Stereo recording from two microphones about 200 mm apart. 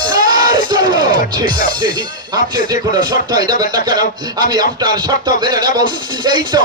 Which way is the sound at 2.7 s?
20° right (ahead or behind).